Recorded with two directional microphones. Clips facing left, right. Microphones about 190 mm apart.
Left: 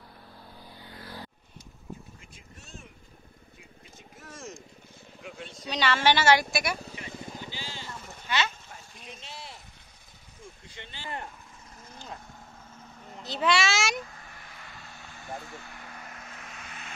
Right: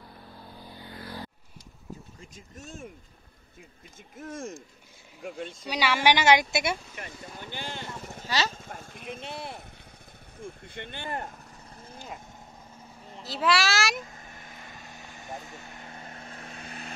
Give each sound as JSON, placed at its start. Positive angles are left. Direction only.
{"t": 2.3, "sound": "vehicle", "side_deg": -50}
{"t": 4.2, "sound": "vehicle", "side_deg": -55}
{"t": 5.2, "sound": "speech", "side_deg": -50}
{"t": 5.7, "sound": "a woman's voice", "side_deg": -10}
{"t": 7.0, "sound": "vehicle", "side_deg": -55}
{"t": 10.4, "sound": "speech", "side_deg": -55}
{"t": 13.1, "sound": "a child's voice", "side_deg": 0}
{"t": 14.0, "sound": "vehicle", "side_deg": -20}